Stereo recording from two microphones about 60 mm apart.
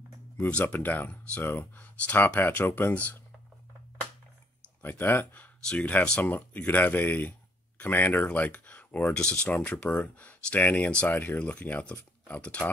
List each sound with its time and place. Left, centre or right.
0.4 s speech: left
4.8 s speech: left
5.8 s speech: left
9.1 s speech: centre